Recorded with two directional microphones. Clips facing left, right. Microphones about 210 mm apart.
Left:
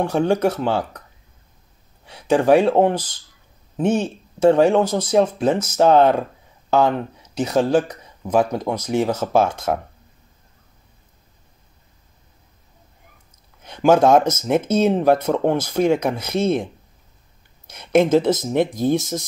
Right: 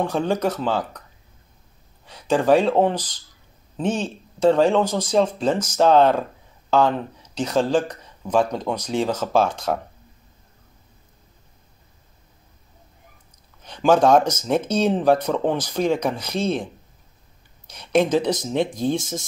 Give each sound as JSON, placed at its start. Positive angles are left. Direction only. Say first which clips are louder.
{"t": 0.0, "sound": "speech", "louder": "left 4 dB", "side_deg": 10}
{"t": 2.0, "sound": "speech", "louder": "left 2 dB", "side_deg": 10}
{"t": 13.7, "sound": "speech", "louder": "left 2 dB", "side_deg": 10}
{"t": 17.7, "sound": "a woman's voice", "louder": "left 3 dB", "side_deg": 10}
{"t": 18.3, "sound": "speech", "louder": "left 3 dB", "side_deg": 20}